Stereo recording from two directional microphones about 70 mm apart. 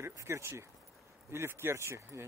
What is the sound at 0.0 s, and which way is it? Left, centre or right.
Speech, right.